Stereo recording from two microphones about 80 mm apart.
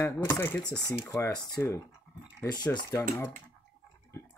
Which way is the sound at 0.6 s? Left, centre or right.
Left.